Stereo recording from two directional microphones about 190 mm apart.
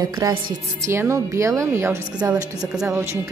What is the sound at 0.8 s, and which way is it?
Speech, 15° right (ahead or behind).